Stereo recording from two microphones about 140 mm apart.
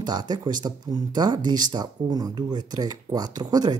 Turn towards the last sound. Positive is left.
turn(degrees=-30)  # may be behind; listen again after turning